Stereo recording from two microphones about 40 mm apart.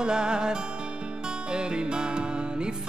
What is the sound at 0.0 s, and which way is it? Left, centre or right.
Music, right.